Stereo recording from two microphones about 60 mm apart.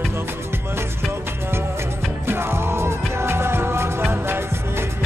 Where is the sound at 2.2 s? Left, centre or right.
Right.